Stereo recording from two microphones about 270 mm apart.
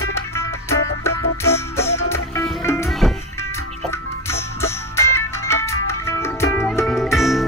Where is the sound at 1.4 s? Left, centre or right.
Centre.